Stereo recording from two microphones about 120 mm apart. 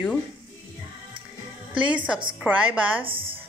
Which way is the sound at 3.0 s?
45° right (ahead or behind).